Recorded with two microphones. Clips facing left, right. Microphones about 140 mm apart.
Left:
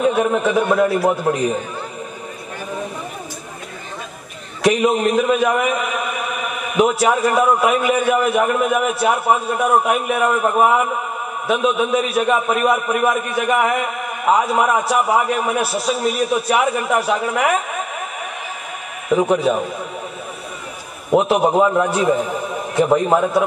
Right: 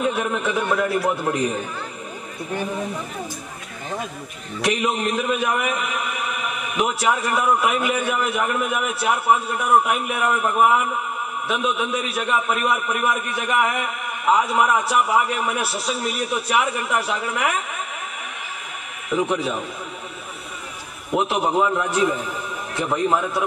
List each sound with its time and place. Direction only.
0.1 s a man's voice: 40° left (ahead or behind)
4.6 s a man's voice: 40° left (ahead or behind)
6.8 s a man's voice: 40° left (ahead or behind)
19.0 s a man's voice: 40° left (ahead or behind)
21.1 s a man's voice: 40° left (ahead or behind)